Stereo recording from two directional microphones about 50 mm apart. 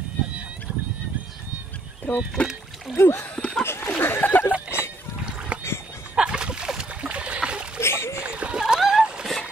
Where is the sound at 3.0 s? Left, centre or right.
Left.